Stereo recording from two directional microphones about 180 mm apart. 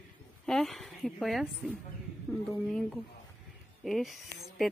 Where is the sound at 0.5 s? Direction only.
Centre (ahead or behind).